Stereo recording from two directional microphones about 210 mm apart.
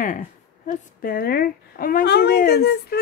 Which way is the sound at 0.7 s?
45° left (ahead or behind).